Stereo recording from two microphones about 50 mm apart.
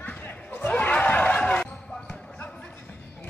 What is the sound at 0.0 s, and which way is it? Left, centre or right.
Basketball bounce, left.